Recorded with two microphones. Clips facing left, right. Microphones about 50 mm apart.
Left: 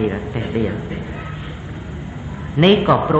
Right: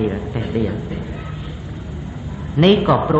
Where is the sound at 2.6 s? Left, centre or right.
Left.